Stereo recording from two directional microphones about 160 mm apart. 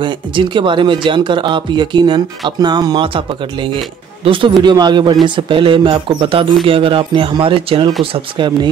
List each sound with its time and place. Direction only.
0.0 s speech: 30° right (ahead or behind)